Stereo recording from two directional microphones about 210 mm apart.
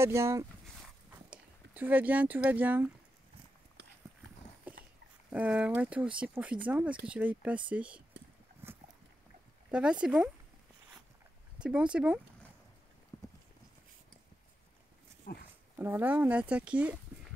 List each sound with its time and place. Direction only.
0.0 s speech: 15° right (ahead or behind)
4.7 s a sound: 5° right (ahead or behind)
5.3 s speech: 5° right (ahead or behind)
9.7 s speech: 5° right (ahead or behind)
11.5 s speech: 5° right (ahead or behind)
13.1 s clip-clop: 15° left (ahead or behind)
15.3 s speech: 45° left (ahead or behind)
15.8 s speech: 10° right (ahead or behind)